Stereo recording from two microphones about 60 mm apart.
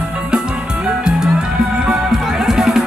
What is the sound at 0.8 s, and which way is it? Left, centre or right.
Music, centre.